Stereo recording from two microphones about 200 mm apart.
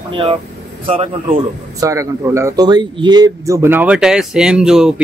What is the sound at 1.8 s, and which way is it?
Speech, 15° right (ahead or behind).